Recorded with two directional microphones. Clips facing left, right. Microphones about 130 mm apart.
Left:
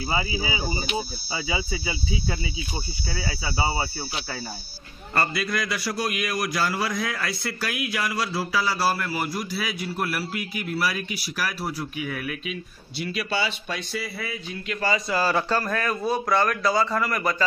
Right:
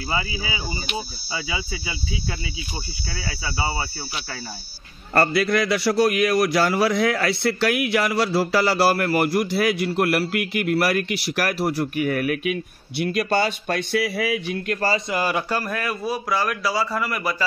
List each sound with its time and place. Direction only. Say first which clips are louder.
5.1 s a man's voice: right 7 dB; 65° right (ahead or behind)
15.0 s a man's voice: even; 15° right (ahead or behind)